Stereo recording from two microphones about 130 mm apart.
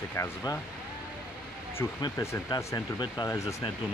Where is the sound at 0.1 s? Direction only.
25° left (ahead or behind).